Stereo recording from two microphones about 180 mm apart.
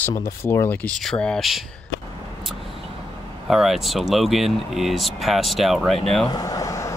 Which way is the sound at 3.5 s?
Centre (ahead or behind).